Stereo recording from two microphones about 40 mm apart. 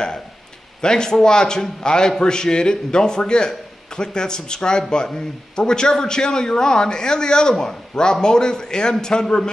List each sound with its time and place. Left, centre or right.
0.7 s a man's voice: centre